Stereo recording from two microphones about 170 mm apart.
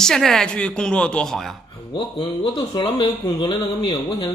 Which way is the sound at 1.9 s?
30° left (ahead or behind).